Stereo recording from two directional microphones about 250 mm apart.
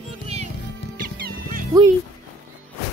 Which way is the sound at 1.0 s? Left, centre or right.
Right.